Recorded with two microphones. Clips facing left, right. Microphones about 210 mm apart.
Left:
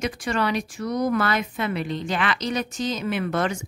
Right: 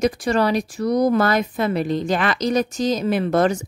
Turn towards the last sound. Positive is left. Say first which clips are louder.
# right 6 dB
turn(degrees=-40)  # may be behind; listen again after turning